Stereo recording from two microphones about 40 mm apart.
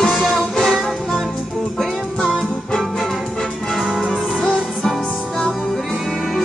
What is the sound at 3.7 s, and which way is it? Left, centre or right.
Music, centre.